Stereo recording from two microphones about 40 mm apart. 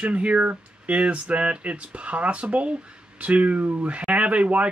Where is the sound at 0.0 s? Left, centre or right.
Right.